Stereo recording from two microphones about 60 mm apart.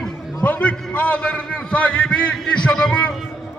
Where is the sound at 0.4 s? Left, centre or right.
Left.